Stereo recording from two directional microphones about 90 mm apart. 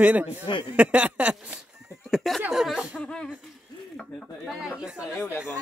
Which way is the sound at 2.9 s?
10° left (ahead or behind).